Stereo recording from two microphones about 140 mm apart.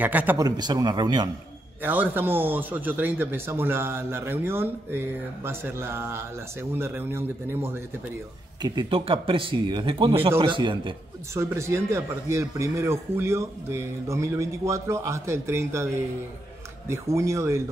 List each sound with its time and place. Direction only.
0.0 s a man's voice: 10° right (ahead or behind)
0.4 s speech: 30° right (ahead or behind)
1.8 s a man's voice: 15° right (ahead or behind)
8.6 s speech: 35° right (ahead or behind)
11.3 s speech: 20° right (ahead or behind)